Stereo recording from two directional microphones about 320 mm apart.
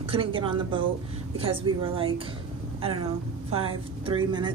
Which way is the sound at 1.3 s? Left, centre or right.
Centre.